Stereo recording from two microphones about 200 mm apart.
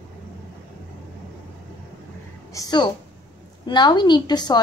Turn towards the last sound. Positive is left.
turn(degrees=20)  # may be behind; listen again after turning